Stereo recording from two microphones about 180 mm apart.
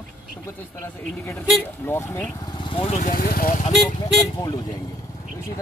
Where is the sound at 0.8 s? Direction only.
15° left (ahead or behind).